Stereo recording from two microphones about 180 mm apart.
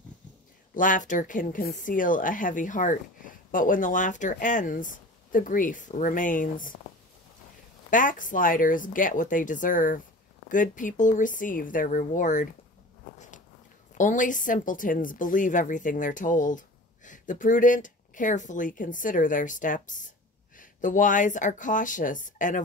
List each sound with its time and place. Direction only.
0.7 s speech: 45° left (ahead or behind)
7.9 s speech: 45° left (ahead or behind)
13.9 s speech: 45° left (ahead or behind)